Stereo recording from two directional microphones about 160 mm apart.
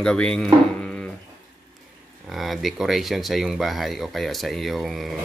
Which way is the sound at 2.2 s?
Centre (ahead or behind).